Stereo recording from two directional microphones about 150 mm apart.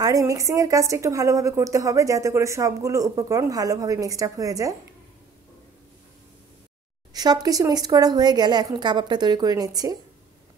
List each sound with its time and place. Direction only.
0.0 s a woman's voice: 20° right (ahead or behind)
7.2 s a woman's voice: 25° right (ahead or behind)